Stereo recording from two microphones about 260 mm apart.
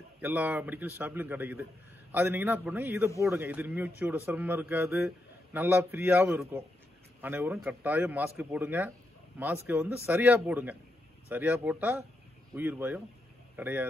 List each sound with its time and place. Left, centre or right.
0.2 s a man's voice: centre